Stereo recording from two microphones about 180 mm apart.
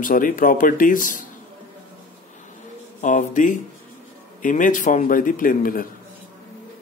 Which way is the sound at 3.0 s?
45° left (ahead or behind).